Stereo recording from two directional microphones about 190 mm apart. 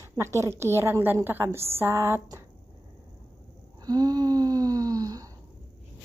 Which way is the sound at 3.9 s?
20° right (ahead or behind).